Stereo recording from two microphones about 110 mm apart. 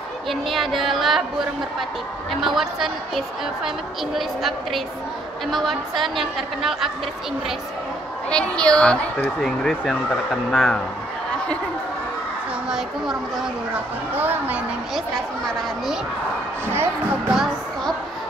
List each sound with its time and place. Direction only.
0.3 s a woman's voice: centre (ahead or behind)
2.4 s a woman's voice: centre (ahead or behind)
8.3 s speech: 10° left (ahead or behind)
12.6 s a woman's voice: 5° right (ahead or behind)
14.1 s a woman's voice: 15° right (ahead or behind)
17.3 s music: 5° right (ahead or behind)